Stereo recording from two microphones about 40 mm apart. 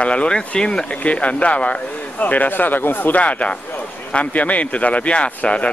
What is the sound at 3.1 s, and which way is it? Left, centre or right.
Speech, left.